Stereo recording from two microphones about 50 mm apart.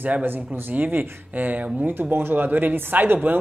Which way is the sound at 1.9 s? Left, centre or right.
Right.